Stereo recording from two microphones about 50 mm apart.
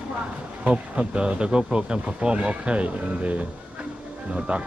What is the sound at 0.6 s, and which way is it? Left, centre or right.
Speech, centre.